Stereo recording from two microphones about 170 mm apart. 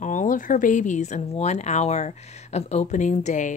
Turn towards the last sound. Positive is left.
turn(degrees=45)  # may be behind; listen again after turning